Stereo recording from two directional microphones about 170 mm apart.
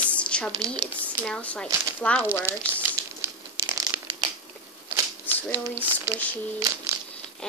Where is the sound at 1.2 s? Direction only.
5° left (ahead or behind).